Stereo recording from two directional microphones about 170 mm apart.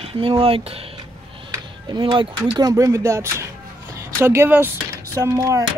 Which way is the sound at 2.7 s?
20° right (ahead or behind).